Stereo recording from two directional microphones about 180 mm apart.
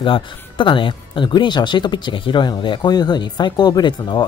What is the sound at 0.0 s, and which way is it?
Speech, 25° left (ahead or behind).